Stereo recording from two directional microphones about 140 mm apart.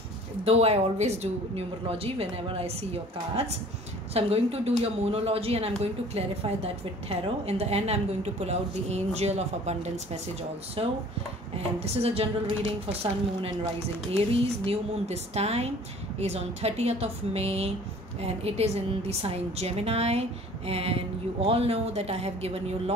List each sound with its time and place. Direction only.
0.5 s speech: 50° right (ahead or behind)
10.8 s speech: 40° right (ahead or behind)
14.1 s speech: 45° right (ahead or behind)